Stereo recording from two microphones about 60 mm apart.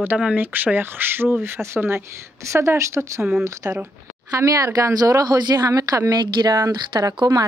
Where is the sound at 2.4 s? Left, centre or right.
Right.